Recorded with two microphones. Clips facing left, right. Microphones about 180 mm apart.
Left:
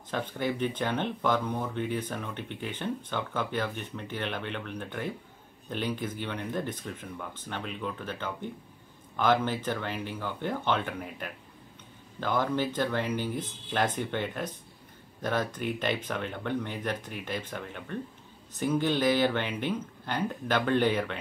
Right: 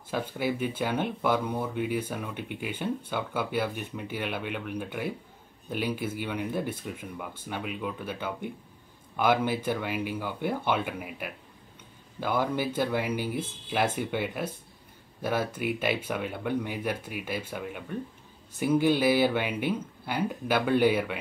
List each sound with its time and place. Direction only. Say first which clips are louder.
0.1 s speech: right 1 dB; 10° right (ahead or behind)